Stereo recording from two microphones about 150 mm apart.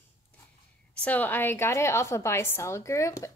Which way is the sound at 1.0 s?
10° left (ahead or behind).